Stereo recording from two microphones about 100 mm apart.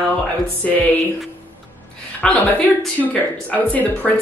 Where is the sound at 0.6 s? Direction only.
10° left (ahead or behind).